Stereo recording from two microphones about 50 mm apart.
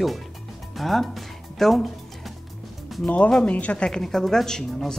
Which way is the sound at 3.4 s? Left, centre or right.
Left.